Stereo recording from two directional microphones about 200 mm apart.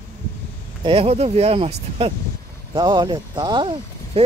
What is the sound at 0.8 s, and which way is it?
Speech, 30° right (ahead or behind).